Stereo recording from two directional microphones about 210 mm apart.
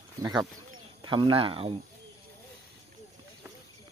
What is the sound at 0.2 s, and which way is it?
Speech, 15° right (ahead or behind).